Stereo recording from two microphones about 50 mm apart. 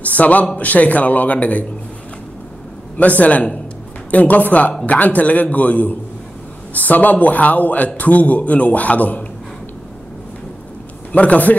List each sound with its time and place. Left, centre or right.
0.0 s a man's voice: left
3.0 s a man's voice: left
11.1 s a man's voice: left